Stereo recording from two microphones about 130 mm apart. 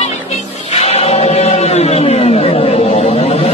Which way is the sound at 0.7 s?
55° left (ahead or behind).